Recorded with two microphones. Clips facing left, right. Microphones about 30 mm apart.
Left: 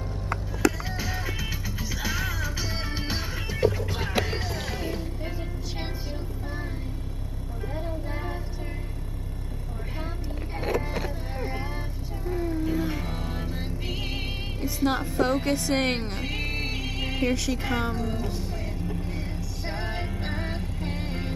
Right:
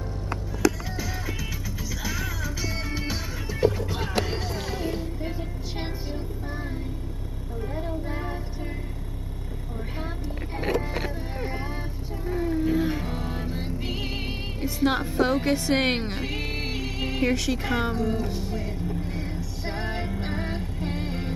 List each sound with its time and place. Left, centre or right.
0.9 s music: centre
3.6 s music: centre
11.3 s vehicle: centre
12.3 s music: centre